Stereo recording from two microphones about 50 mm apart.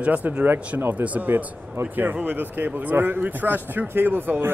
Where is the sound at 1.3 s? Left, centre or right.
Right.